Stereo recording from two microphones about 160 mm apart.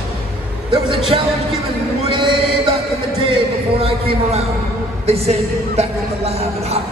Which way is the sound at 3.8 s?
35° right (ahead or behind).